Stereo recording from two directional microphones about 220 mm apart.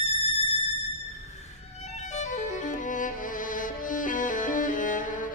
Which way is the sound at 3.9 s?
35° left (ahead or behind).